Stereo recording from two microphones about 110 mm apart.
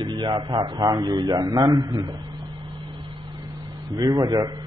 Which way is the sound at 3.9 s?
40° right (ahead or behind).